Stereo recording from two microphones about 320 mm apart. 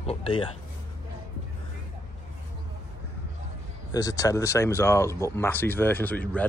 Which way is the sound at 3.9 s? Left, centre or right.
Centre.